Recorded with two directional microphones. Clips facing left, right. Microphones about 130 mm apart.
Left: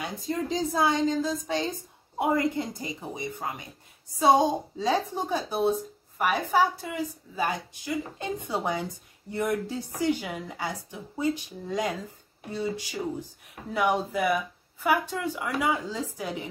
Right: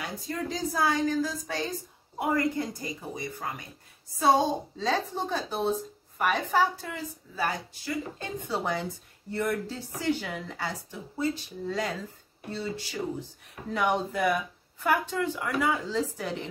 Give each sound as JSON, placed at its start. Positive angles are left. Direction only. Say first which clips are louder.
{"t": 0.0, "sound": "a woman's voice", "louder": "left 3 dB", "side_deg": 20}